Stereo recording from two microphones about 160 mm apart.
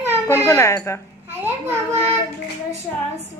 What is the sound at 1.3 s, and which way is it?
Speech, 15° right (ahead or behind).